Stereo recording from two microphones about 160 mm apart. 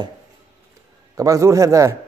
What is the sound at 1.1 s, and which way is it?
Speech, 20° right (ahead or behind).